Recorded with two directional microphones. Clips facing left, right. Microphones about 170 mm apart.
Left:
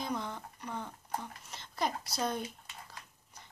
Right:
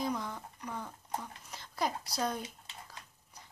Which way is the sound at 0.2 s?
20° left (ahead or behind).